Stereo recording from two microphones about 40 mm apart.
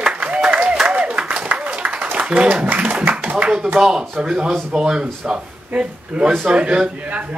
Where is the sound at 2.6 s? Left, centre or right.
Right.